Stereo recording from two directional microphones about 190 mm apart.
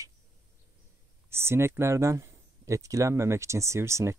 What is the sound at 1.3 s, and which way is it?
Speech, 15° right (ahead or behind).